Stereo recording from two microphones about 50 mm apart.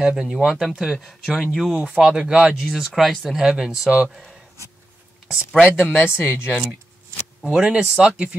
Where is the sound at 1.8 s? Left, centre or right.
Centre.